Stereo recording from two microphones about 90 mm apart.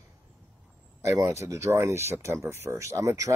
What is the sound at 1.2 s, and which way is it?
Speech, 35° right (ahead or behind).